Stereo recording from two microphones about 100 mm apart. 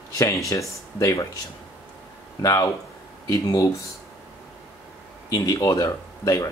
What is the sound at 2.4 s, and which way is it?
Speech, 40° left (ahead or behind).